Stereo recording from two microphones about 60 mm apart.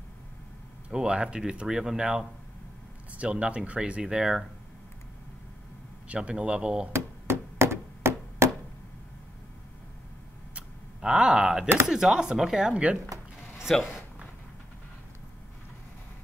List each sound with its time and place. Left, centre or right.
0.8 s speech: centre
6.0 s speech: centre
6.9 s a sound: right
10.5 s a sound: centre
11.9 s speech: centre
13.7 s speech: centre